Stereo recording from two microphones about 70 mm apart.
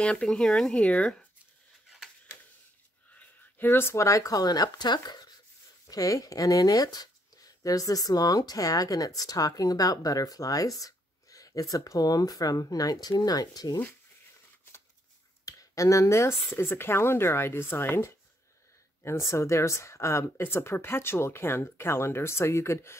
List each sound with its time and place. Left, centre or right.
0.0 s speech: centre
3.2 s speech: left
5.9 s speech: left
15.4 s speech: left
19.0 s speech: left